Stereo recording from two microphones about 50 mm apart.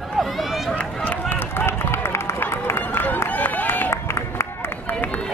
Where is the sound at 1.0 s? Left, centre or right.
Left.